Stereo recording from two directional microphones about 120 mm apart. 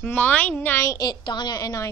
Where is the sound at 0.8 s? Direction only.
35° left (ahead or behind).